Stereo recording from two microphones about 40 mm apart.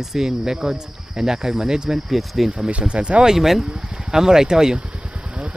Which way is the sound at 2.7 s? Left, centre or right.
Right.